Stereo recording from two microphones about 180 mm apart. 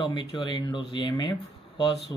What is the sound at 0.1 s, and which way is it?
A man's voice, 25° left (ahead or behind).